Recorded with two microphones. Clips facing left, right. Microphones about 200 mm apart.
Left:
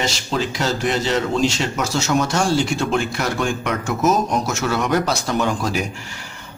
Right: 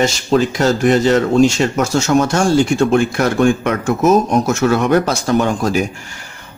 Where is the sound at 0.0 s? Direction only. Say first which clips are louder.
Right 8 dB; 50° right (ahead or behind).